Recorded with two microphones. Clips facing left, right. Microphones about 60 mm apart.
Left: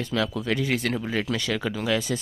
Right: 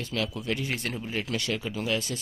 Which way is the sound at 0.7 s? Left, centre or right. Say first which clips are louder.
Left 7 dB; left.